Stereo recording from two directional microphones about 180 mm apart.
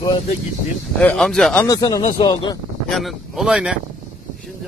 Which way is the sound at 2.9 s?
Centre (ahead or behind).